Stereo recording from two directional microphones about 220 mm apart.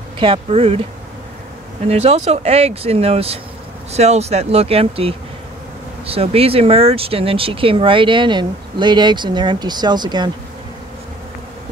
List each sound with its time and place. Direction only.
0.2 s speech: 25° right (ahead or behind)
1.9 s speech: 30° right (ahead or behind)